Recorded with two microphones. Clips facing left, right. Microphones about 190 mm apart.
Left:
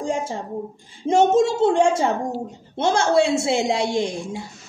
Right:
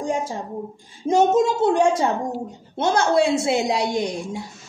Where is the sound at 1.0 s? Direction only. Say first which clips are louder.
Left 1 dB; 25° left (ahead or behind).